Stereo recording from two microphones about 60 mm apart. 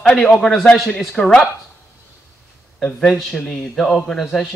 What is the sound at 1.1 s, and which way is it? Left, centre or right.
Speech, centre.